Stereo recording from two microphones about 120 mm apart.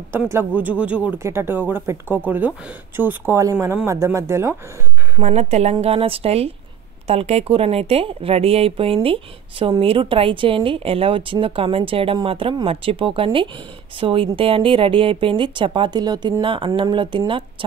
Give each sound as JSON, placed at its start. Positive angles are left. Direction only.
{"t": 0.1, "sound": "a man's voice", "side_deg": -20}
{"t": 1.1, "sound": "a man's voice", "side_deg": -20}
{"t": 5.2, "sound": "a woman's voice", "side_deg": -70}